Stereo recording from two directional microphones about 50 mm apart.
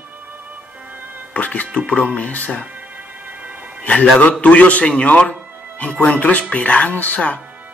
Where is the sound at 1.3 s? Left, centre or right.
Left.